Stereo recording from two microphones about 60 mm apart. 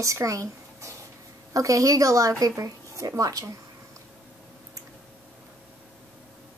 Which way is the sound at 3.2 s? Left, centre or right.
Right.